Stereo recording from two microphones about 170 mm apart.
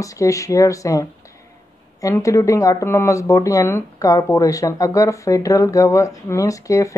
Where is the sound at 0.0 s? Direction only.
20° left (ahead or behind).